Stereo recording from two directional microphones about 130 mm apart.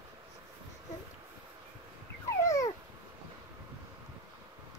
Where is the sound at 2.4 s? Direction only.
25° left (ahead or behind).